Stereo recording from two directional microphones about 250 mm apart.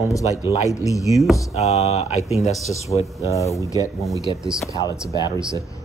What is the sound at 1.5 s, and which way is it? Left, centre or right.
Speech, left.